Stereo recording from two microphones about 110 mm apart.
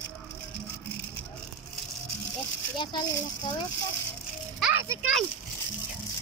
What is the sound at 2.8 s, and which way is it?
Speech, 45° left (ahead or behind).